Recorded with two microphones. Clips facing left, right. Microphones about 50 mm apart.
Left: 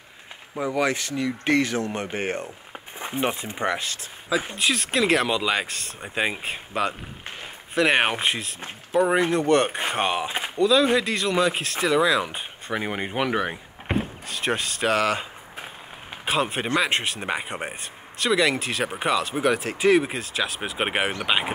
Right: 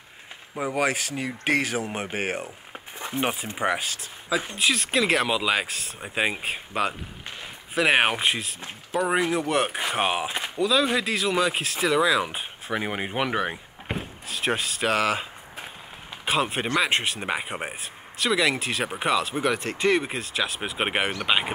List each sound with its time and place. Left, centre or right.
0.6 s speech: right
1.9 s speech: centre
16.3 s speech: centre